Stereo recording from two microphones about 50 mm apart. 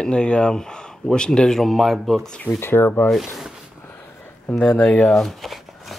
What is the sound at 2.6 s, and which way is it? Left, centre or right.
Speech, left.